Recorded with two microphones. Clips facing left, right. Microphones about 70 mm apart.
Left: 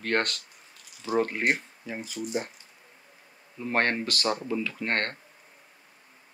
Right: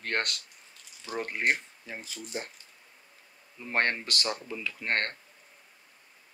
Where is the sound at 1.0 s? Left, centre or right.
Left.